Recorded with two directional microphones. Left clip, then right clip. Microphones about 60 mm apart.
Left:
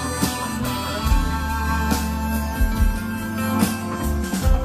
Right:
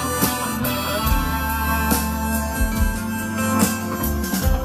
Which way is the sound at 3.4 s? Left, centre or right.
Right.